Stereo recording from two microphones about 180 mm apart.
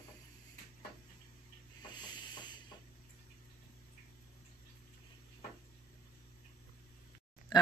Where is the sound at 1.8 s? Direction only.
25° left (ahead or behind).